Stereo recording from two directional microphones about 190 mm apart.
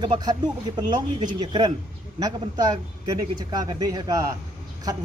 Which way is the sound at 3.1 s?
20° right (ahead or behind).